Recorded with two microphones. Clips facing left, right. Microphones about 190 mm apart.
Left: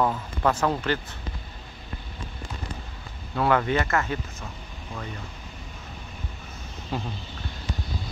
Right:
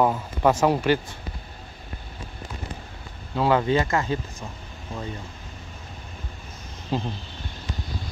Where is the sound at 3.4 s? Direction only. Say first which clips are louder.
Right 2 dB; 20° right (ahead or behind).